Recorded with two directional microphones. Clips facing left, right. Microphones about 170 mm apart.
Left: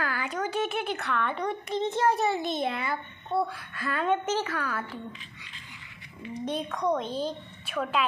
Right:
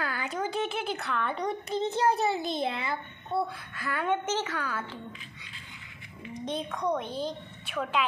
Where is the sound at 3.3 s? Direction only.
Centre (ahead or behind).